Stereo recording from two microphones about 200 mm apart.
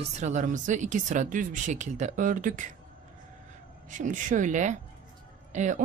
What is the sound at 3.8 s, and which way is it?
Speech, 40° right (ahead or behind).